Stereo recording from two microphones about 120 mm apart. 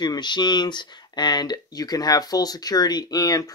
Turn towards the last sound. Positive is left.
turn(degrees=30)  # may be behind; listen again after turning